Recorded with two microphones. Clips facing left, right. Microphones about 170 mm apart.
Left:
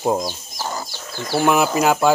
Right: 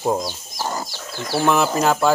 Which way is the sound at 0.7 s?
10° right (ahead or behind).